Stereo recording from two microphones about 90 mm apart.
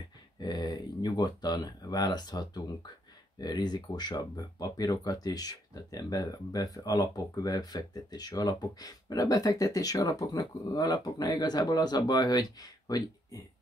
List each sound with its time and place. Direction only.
0.4 s speech: 50° left (ahead or behind)